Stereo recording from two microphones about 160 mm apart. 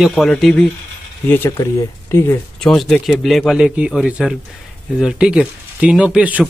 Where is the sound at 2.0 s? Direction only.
15° left (ahead or behind).